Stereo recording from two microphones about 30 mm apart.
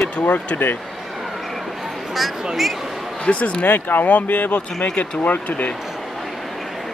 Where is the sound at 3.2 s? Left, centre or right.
Left.